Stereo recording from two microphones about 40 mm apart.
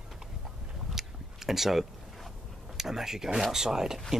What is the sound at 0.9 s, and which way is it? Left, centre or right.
Biting, centre.